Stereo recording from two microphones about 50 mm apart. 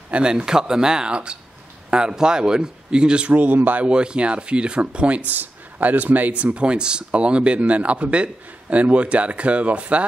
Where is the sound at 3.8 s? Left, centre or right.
Centre.